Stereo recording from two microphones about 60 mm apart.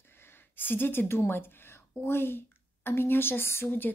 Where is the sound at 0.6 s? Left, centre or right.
Left.